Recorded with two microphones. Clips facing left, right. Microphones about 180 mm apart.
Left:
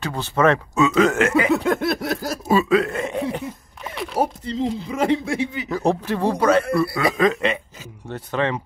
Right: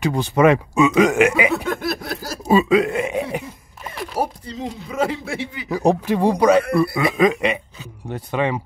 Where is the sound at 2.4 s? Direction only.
15° right (ahead or behind); by 4.2 s centre (ahead or behind).